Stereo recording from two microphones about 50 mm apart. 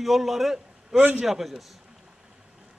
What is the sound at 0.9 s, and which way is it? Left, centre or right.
Speech, right.